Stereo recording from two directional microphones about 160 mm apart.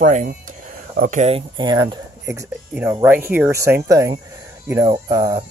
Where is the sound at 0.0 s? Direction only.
55° right (ahead or behind).